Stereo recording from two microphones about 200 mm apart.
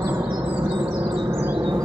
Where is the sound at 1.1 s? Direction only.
15° right (ahead or behind).